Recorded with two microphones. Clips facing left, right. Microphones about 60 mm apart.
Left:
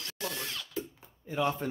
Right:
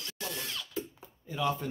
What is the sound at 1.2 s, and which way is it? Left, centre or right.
Speech, left.